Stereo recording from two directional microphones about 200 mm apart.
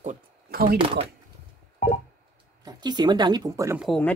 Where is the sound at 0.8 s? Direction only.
25° right (ahead or behind).